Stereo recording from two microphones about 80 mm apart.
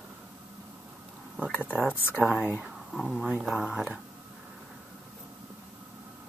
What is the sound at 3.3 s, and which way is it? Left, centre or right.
Speech, centre.